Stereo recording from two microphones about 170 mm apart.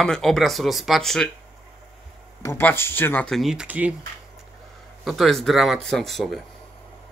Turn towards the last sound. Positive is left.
turn(degrees=0)  # may be behind; listen again after turning